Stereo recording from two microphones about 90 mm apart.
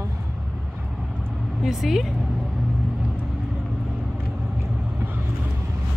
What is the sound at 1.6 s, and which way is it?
Speech, 5° right (ahead or behind).